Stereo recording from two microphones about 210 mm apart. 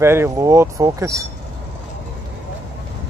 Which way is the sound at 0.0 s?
10° right (ahead or behind).